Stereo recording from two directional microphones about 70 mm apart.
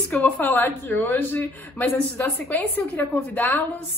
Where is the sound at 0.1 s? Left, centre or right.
Left.